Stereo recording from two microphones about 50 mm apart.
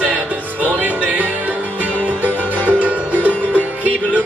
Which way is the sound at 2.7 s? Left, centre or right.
Right.